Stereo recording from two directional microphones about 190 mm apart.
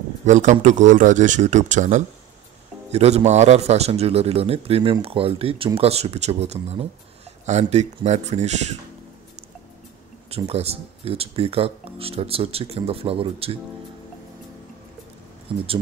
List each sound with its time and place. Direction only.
0.2 s a man's voice: 40° right (ahead or behind)
10.3 s a man's voice: 35° right (ahead or behind)